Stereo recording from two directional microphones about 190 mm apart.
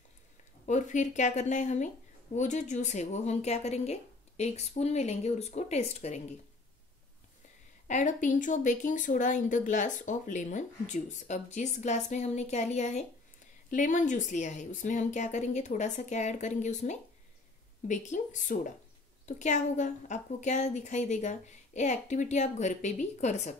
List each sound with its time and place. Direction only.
0.7 s speech: 40° left (ahead or behind)
7.9 s speech: 40° left (ahead or behind)